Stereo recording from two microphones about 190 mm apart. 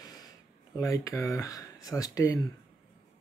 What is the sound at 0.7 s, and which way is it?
Speech, 15° left (ahead or behind).